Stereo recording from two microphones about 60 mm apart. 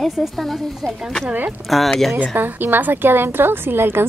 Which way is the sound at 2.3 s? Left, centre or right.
Right.